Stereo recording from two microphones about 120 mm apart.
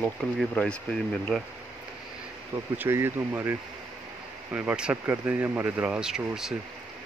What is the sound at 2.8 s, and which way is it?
Speech, 20° right (ahead or behind).